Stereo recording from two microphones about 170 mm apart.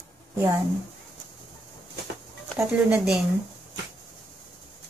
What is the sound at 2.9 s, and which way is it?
Speech, 5° right (ahead or behind).